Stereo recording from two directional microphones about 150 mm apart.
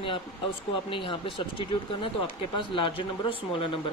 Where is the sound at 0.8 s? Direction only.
35° left (ahead or behind).